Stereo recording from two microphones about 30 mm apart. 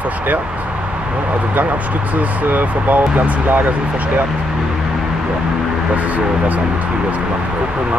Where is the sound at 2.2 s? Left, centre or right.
Right.